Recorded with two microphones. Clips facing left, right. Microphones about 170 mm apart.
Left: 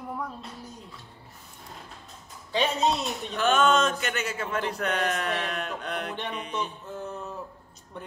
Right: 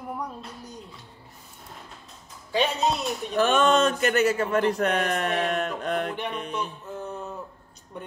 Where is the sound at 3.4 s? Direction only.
35° right (ahead or behind).